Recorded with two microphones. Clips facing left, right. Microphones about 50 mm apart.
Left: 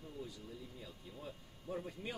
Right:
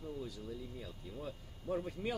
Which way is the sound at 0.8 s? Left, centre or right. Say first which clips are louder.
Right 4 dB; right.